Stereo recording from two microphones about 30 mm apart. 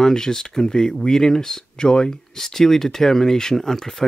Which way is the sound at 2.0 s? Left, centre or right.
Centre.